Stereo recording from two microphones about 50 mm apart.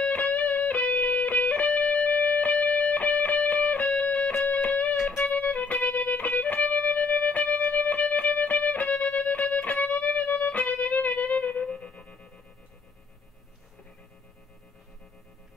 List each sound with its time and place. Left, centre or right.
0.1 s music: left
11.6 s music: centre